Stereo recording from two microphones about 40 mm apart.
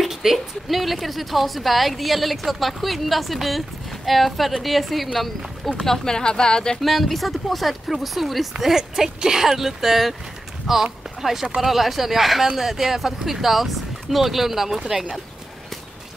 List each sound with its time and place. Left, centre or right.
0.0 s a woman's voice: centre
5.7 s speech: centre
6.8 s a woman's voice: centre